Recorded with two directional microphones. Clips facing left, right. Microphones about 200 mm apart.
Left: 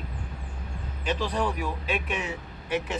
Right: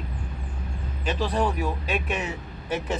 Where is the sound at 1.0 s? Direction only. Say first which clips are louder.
Right 2 dB; 40° right (ahead or behind).